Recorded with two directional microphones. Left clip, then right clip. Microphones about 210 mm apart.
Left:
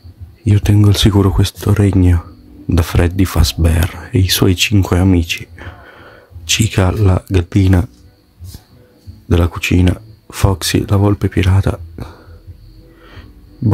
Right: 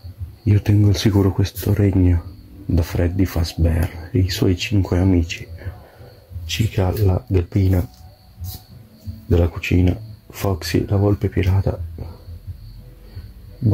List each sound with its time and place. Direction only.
0.5 s speech: 20° left (ahead or behind)
9.3 s speech: 25° left (ahead or behind)